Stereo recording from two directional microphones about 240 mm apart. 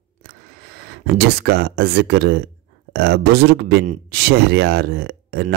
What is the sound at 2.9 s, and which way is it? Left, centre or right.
Speech, right.